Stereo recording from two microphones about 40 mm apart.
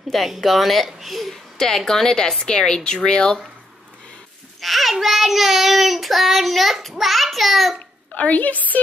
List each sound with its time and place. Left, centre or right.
0.1 s child singing: centre
0.8 s speech: centre
1.9 s a woman's voice: centre
4.6 s a sound: centre
4.9 s child singing: centre
8.1 s a woman's voice: left